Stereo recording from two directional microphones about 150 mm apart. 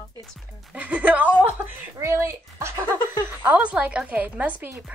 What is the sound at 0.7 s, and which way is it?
Speech, 10° right (ahead or behind).